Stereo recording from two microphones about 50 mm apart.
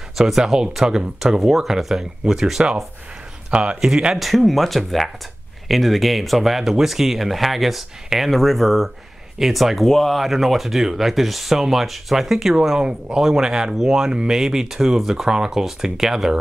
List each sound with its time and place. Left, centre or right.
0.2 s speech: centre
3.5 s a man's voice: right
4.2 s speech: centre